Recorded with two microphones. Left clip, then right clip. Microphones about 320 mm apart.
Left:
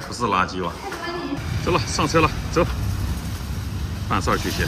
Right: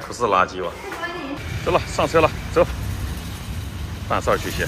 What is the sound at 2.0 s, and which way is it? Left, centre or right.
Speech, centre.